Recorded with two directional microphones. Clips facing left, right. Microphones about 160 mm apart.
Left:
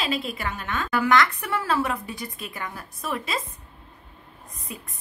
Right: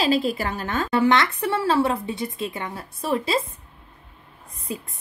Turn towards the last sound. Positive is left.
turn(degrees=-30)  # may be behind; listen again after turning